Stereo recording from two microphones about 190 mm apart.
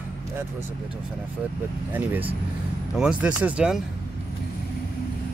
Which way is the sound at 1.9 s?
10° right (ahead or behind).